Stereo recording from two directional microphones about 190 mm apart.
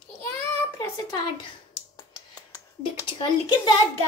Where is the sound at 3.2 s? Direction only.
25° left (ahead or behind).